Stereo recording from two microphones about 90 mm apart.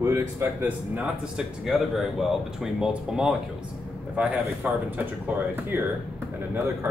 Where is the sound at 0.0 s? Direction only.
25° right (ahead or behind).